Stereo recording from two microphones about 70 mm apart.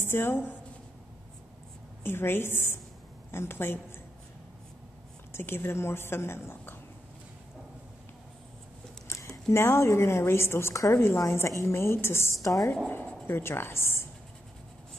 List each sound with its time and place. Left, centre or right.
0.0 s a woman's voice: left
2.0 s a woman's voice: left
5.3 s a woman's voice: left
9.0 s a sound: left
9.5 s a woman's voice: left
12.9 s speech: left